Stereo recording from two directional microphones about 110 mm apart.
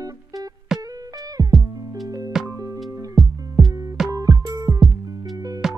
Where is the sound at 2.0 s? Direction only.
35° right (ahead or behind).